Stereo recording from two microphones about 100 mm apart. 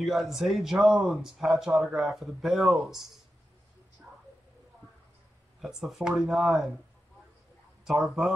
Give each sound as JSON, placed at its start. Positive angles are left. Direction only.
{"t": 0.0, "sound": "speech", "side_deg": -5}
{"t": 5.6, "sound": "speech", "side_deg": -5}
{"t": 7.8, "sound": "speech", "side_deg": 0}